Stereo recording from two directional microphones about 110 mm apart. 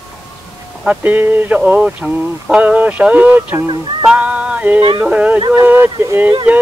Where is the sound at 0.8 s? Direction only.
15° right (ahead or behind).